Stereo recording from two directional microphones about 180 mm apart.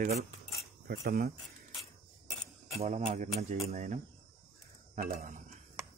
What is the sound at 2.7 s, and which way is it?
Speech, 40° right (ahead or behind).